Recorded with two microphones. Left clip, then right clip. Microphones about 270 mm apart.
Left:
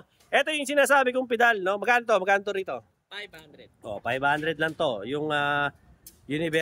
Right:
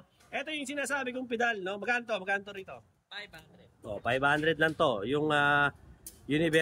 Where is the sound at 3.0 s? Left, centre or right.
Left.